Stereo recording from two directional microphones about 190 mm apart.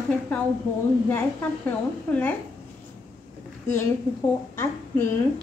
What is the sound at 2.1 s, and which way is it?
Speech, 10° left (ahead or behind).